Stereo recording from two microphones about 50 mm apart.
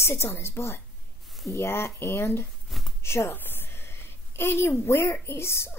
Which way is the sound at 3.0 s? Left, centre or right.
Left.